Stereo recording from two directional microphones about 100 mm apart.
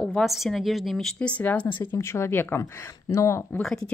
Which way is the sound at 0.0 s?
10° left (ahead or behind).